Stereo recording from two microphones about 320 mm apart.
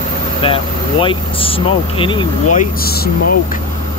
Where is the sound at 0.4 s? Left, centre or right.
Centre.